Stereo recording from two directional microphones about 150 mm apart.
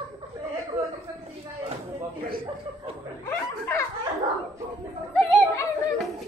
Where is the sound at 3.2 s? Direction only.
15° left (ahead or behind).